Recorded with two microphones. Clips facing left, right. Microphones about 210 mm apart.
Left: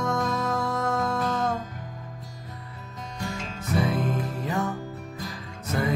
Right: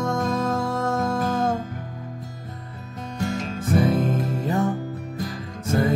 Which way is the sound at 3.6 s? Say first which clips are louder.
Right 5 dB; 50° right (ahead or behind).